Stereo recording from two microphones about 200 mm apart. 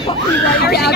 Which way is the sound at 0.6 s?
55° left (ahead or behind).